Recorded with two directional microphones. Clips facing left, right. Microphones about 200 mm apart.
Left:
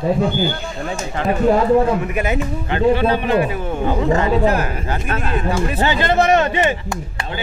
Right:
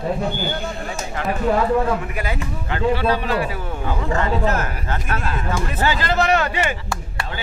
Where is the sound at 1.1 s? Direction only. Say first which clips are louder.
Left 4 dB; 25° left (ahead or behind).